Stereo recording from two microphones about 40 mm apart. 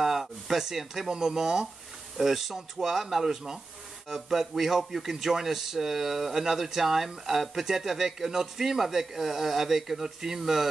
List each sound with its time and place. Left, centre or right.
0.0 s speech: centre